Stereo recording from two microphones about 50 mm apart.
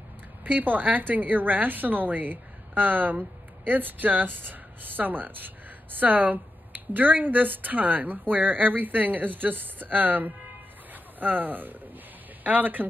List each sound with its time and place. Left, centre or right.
0.4 s a woman's voice: right
10.9 s a sound: right
12.4 s a woman's voice: right